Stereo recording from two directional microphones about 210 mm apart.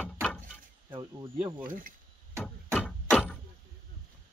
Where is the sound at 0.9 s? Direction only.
15° right (ahead or behind).